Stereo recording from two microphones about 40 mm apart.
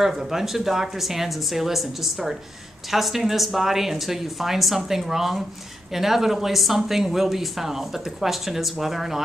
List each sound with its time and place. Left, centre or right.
0.0 s speech: centre